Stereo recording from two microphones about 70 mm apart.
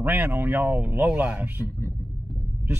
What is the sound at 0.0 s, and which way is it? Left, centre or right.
Speech, right.